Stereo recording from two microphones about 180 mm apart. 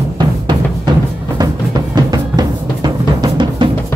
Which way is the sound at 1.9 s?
20° right (ahead or behind).